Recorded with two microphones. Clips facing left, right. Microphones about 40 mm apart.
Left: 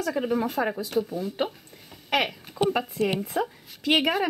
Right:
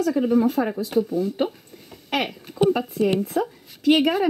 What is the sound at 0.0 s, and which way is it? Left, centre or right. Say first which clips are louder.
Speech: right 6 dB; centre.